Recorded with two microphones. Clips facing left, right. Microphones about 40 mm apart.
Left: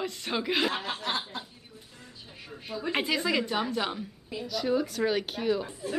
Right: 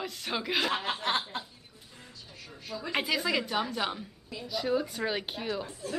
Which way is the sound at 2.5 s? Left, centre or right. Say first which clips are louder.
Left 4 dB; centre.